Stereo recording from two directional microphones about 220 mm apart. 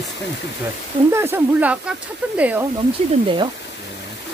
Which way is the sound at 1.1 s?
10° right (ahead or behind).